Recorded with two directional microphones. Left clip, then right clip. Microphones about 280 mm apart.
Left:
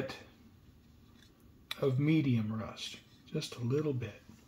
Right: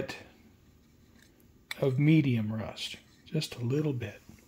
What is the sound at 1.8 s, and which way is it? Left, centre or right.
Speech, right.